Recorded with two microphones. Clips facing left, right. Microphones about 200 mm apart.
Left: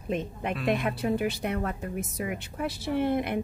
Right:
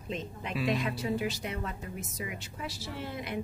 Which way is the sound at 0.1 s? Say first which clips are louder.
Left 6 dB; 55° left (ahead or behind).